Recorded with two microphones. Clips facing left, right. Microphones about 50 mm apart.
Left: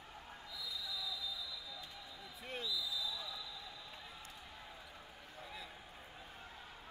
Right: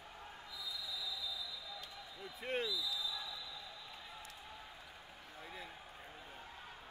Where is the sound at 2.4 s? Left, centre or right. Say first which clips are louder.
Right 4 dB; right.